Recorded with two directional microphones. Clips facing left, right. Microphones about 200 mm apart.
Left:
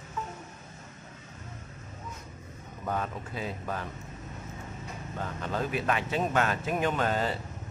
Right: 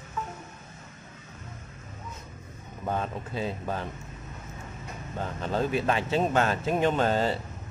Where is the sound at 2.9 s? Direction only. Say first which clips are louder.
Right 2 dB; 25° right (ahead or behind).